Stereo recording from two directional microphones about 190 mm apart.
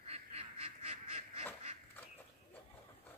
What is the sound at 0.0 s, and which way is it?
Duck, 30° right (ahead or behind).